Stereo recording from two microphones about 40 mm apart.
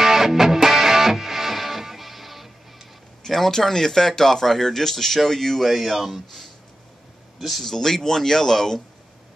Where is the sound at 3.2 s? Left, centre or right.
Centre.